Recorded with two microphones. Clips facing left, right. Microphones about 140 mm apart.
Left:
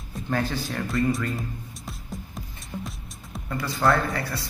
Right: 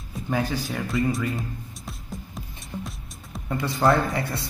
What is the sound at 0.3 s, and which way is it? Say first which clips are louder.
Speech: right 1 dB; 10° right (ahead or behind).